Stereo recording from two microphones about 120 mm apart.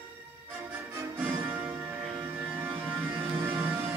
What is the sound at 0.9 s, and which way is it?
Music, 15° right (ahead or behind).